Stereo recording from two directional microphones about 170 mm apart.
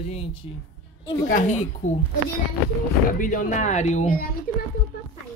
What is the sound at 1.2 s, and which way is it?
Speech, 45° left (ahead or behind).